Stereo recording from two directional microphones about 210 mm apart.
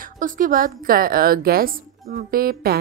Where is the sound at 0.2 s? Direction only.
40° right (ahead or behind).